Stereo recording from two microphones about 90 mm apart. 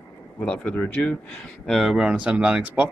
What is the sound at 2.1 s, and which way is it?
Speech, 15° right (ahead or behind).